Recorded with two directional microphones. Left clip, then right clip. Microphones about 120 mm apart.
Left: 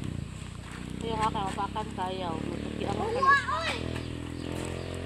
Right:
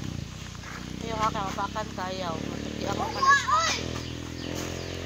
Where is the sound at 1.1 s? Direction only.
Centre (ahead or behind).